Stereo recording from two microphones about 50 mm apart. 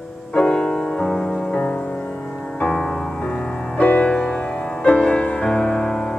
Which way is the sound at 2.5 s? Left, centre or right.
Centre.